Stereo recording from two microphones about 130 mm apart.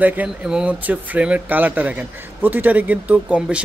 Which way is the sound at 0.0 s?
10° right (ahead or behind).